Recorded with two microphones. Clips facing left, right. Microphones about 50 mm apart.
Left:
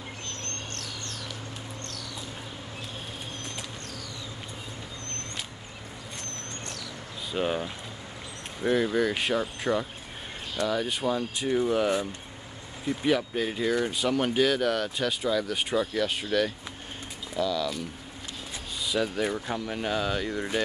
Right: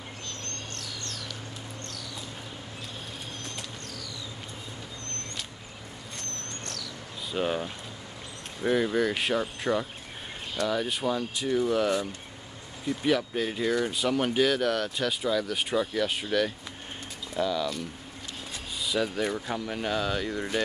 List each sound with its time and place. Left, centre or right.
6.1 s a sound: centre
7.3 s speech: centre
11.3 s speech: left
13.0 s speech: centre
17.4 s speech: right
18.8 s speech: centre